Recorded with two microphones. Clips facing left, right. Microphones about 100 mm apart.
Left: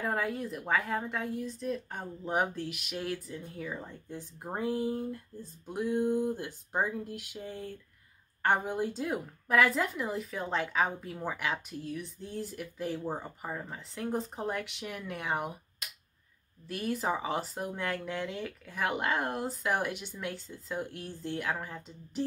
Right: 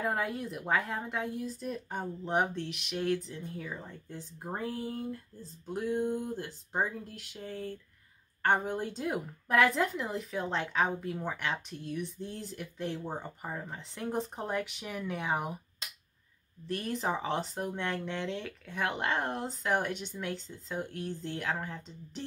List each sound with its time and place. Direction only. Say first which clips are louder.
0.0 s a woman's voice: even; centre (ahead or behind)
4.1 s speech: left 1 dB; 15° left (ahead or behind)
8.5 s a woman's voice: even; 5° left (ahead or behind)
16.6 s a woman's voice: left 1 dB; 5° left (ahead or behind)